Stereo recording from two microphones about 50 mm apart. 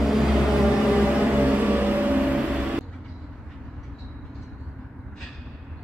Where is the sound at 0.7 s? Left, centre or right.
Right.